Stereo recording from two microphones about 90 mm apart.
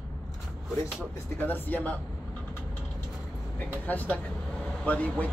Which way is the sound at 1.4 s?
20° left (ahead or behind).